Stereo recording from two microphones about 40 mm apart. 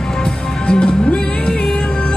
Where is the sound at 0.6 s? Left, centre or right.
Left.